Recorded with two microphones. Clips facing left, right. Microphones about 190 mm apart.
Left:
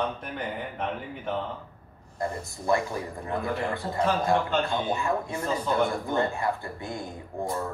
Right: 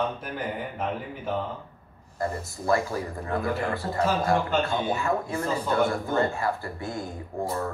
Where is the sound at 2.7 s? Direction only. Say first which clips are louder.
Right 1 dB; 20° left (ahead or behind).